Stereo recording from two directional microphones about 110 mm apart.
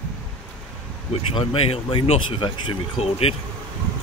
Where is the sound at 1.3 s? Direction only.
60° left (ahead or behind).